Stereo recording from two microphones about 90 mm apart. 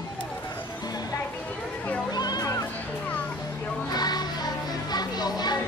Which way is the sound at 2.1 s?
50° left (ahead or behind).